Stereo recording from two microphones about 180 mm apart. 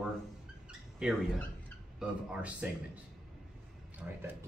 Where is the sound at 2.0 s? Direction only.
5° right (ahead or behind).